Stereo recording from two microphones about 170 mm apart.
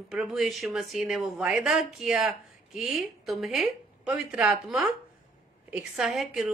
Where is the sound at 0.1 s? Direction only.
5° right (ahead or behind).